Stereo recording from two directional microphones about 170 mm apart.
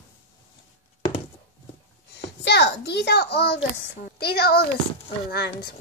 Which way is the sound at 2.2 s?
90° left.